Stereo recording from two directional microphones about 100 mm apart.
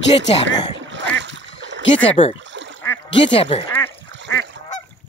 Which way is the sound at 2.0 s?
60° left (ahead or behind).